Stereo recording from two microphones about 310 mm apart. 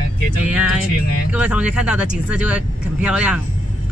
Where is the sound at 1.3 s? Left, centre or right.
Centre.